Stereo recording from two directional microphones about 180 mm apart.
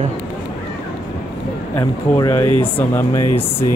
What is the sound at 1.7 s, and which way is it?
Speech, 20° left (ahead or behind).